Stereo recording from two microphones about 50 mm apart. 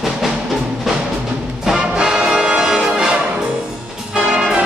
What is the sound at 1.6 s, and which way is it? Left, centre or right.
Music, centre.